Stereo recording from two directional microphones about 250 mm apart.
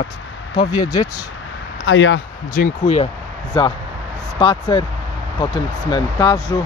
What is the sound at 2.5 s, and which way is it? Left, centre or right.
Speech, left.